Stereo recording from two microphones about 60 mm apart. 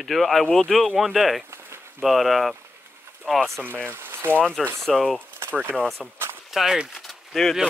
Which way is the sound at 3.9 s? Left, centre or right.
Right.